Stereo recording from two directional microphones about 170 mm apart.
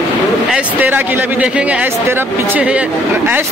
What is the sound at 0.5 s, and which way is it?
Speech, 10° right (ahead or behind).